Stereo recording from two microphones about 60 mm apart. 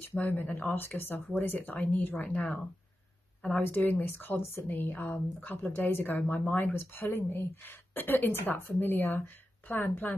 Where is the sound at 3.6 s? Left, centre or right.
Left.